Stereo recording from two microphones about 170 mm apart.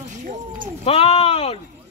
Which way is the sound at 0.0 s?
45° right (ahead or behind).